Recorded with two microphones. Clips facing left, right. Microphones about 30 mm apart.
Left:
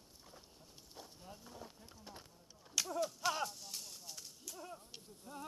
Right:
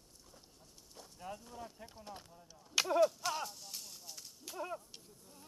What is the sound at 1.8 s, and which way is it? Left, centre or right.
Speech, right.